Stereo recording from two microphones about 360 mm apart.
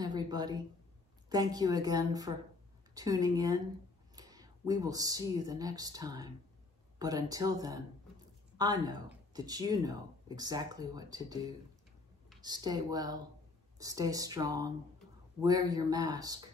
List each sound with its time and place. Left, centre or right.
0.0 s a sound: centre
1.3 s speech: centre
12.4 s speech: centre